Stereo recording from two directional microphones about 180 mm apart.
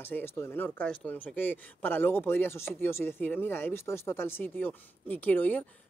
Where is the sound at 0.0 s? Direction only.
10° left (ahead or behind).